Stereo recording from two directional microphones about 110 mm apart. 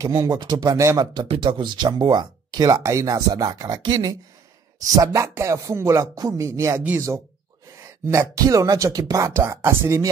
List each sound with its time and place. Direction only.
0.0 s speech: 35° right (ahead or behind)
1.3 s speech: 50° right (ahead or behind); by 10.0 s 25° right (ahead or behind)